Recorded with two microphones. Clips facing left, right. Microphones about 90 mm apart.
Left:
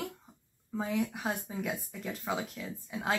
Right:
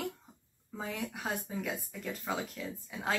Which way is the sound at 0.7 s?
Centre (ahead or behind).